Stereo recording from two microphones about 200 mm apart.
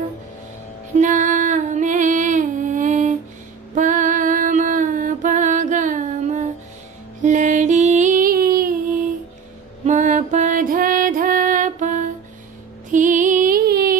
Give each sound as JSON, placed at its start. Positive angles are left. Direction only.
{"t": 0.9, "sound": "female singing", "side_deg": -40}
{"t": 3.7, "sound": "music", "side_deg": -40}